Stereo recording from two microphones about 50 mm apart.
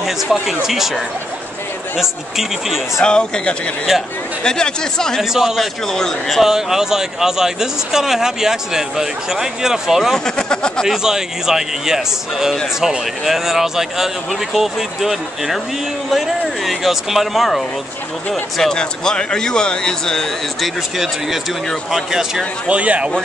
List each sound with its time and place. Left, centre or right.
0.0 s speech: centre
3.0 s speech: centre
5.3 s speech: centre
6.4 s speech: centre
10.1 s speech: centre
10.9 s speech: centre
20.6 s speech: centre
22.7 s speech: right